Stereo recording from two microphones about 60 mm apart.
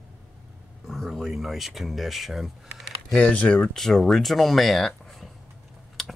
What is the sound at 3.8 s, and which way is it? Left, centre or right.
Speech, centre.